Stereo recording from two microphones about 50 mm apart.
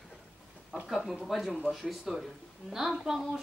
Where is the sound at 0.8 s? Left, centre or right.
Centre.